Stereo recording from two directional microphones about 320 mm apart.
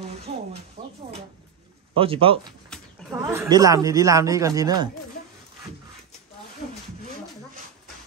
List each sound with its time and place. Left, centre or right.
0.3 s music: centre
0.8 s a sound: right
2.0 s speech: centre